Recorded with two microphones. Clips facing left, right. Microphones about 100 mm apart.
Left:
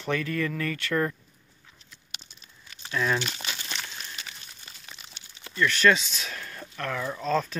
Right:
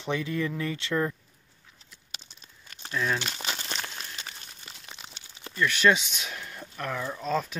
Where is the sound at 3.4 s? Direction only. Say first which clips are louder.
Right 2 dB; 35° right (ahead or behind).